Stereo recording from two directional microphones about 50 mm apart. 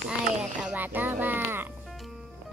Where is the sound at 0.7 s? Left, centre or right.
Right.